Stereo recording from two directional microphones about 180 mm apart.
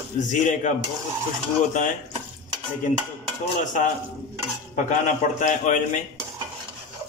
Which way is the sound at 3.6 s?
45° left (ahead or behind).